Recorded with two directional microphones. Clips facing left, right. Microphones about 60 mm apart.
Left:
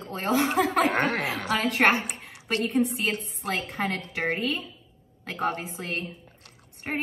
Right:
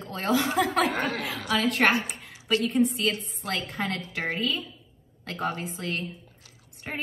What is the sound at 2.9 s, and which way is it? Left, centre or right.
Speech, left.